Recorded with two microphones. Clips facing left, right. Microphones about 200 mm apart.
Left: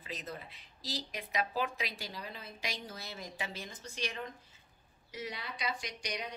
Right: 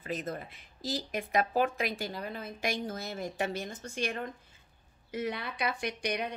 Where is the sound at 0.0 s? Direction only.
50° right (ahead or behind).